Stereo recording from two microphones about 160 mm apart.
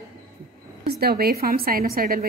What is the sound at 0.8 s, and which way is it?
A woman's voice, 85° right.